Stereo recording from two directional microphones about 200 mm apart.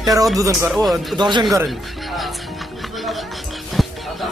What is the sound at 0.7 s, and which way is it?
Speech, centre (ahead or behind).